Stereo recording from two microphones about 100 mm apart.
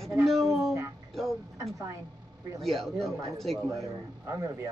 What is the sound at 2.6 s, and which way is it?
Speech, centre (ahead or behind).